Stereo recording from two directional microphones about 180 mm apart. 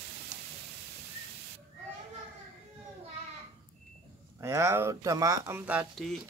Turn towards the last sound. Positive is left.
turn(degrees=0)  # may be behind; listen again after turning